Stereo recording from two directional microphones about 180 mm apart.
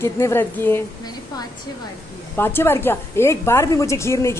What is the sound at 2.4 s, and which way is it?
A woman's voice, 10° left (ahead or behind).